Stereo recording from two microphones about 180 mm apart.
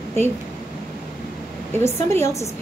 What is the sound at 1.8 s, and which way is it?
Speech, 15° left (ahead or behind).